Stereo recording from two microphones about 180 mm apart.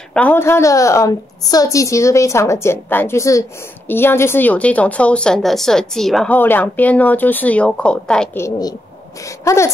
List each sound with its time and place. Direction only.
0.1 s a woman's voice: 10° left (ahead or behind)
8.5 s a woman's voice: 20° left (ahead or behind)